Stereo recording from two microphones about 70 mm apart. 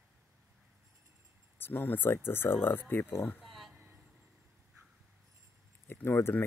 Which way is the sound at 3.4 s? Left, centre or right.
Centre.